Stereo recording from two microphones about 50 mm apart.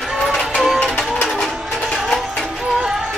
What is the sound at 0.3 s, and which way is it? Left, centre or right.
Music, centre.